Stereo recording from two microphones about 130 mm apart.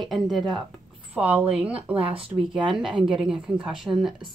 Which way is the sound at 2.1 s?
45° right (ahead or behind).